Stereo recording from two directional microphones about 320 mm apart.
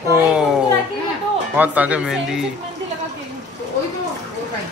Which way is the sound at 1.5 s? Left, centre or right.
Centre.